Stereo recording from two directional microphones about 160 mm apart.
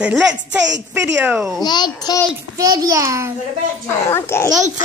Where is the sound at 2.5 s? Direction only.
20° right (ahead or behind).